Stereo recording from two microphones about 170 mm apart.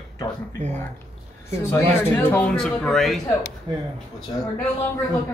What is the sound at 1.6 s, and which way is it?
Speech, 15° left (ahead or behind).